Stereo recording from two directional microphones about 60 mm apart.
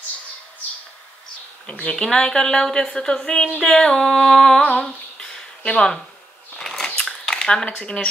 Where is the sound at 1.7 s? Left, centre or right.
Centre.